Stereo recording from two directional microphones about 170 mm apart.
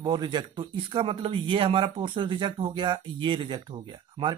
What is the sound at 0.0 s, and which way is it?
Speech, 25° right (ahead or behind).